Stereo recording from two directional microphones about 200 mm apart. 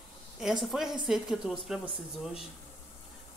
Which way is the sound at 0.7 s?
Centre (ahead or behind).